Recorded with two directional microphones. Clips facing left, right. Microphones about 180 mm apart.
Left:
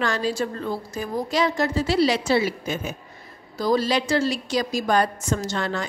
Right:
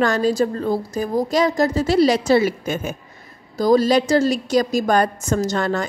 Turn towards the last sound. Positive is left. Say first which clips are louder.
# right 5 dB
turn(degrees=-45)  # may be behind; listen again after turning